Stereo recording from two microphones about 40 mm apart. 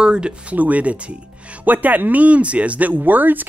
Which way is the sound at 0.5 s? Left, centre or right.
Right.